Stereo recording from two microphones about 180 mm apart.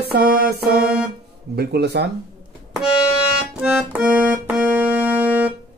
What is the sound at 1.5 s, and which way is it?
Speech, 65° right (ahead or behind).